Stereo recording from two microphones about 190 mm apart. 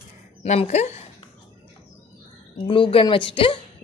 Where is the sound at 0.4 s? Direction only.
35° left (ahead or behind).